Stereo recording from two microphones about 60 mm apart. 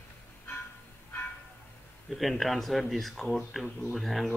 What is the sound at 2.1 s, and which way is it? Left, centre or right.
Speech, centre.